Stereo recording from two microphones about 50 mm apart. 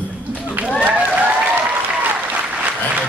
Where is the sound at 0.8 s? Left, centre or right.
Right.